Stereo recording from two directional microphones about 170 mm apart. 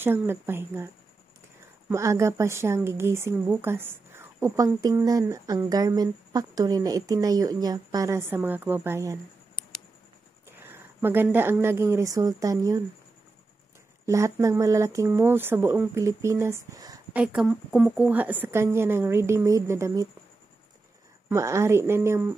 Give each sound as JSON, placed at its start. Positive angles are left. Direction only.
{"t": 0.0, "sound": "a woman's voice", "side_deg": -15}
{"t": 1.9, "sound": "a woman's voice", "side_deg": -15}
{"t": 10.6, "sound": "speech", "side_deg": -15}
{"t": 14.0, "sound": "a woman's voice", "side_deg": -20}
{"t": 17.1, "sound": "a woman's voice", "side_deg": -5}
{"t": 21.3, "sound": "a woman's voice", "side_deg": -15}